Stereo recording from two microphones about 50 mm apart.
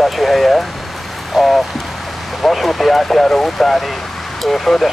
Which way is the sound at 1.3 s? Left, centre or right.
Centre.